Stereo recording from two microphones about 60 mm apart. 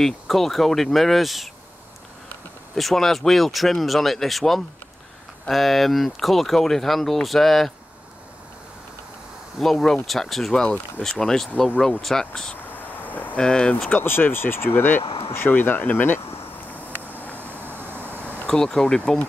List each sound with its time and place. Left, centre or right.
0.0 s speech: centre
2.7 s speech: centre
9.6 s speech: centre
12.6 s vehicle: left
13.4 s speech: centre
13.8 s speech: left
16.7 s vehicle: left
17.4 s a sound: right
18.5 s speech: centre